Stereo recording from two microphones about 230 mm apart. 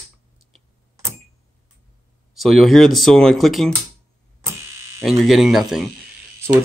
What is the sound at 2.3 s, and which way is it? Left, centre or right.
Speech, centre.